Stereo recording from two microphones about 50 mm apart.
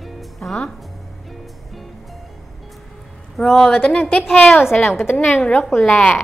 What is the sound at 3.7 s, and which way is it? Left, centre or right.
Speech, left.